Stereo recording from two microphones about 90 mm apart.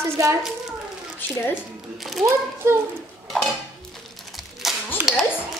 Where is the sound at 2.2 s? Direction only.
30° right (ahead or behind).